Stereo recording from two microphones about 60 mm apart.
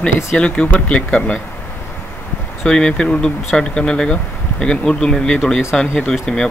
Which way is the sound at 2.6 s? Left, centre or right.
Centre.